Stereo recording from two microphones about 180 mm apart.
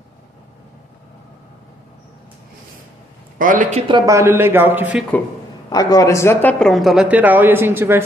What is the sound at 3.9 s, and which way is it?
Speech, 20° right (ahead or behind).